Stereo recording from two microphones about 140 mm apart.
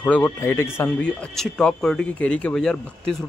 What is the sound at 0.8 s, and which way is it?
Speech, 5° left (ahead or behind).